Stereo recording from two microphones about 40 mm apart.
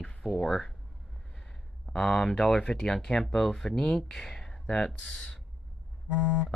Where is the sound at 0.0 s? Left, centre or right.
Left.